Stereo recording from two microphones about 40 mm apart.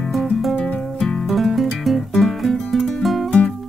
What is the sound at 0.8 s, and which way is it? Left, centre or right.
Music, centre.